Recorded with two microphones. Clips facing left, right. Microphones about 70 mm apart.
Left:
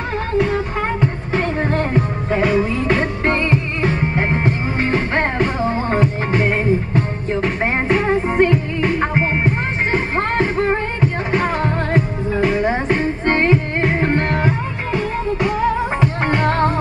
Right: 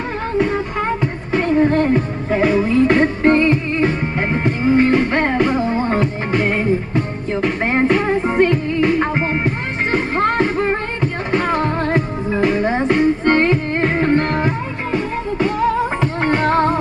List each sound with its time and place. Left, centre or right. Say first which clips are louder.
3.3 s music: right 4 dB; left
5.9 s music: even; centre
7.6 s music: right 2 dB; centre
9.9 s music: right 3 dB; left
11.0 s music: left 1 dB; centre
12.7 s music: right 4 dB; left
16.3 s music: right 1 dB; right